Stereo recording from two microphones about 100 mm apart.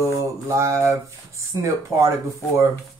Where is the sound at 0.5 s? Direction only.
30° right (ahead or behind).